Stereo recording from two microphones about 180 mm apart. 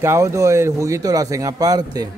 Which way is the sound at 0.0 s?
15° right (ahead or behind).